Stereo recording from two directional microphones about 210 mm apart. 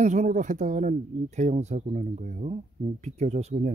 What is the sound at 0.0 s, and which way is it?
Speech, 35° right (ahead or behind).